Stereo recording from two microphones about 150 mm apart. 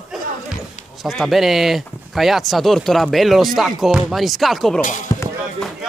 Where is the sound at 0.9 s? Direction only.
Centre (ahead or behind).